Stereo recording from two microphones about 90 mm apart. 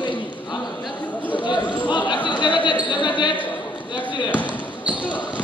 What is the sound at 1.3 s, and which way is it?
Chatter, 55° left (ahead or behind).